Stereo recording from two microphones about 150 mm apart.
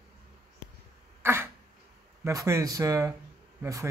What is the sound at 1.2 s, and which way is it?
Cough, 15° right (ahead or behind).